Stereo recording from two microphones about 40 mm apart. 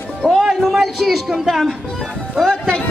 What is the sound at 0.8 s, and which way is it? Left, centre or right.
Speech, centre.